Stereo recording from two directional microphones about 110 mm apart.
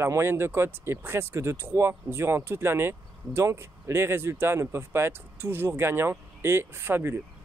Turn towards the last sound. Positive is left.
turn(degrees=-20)  # may be behind; listen again after turning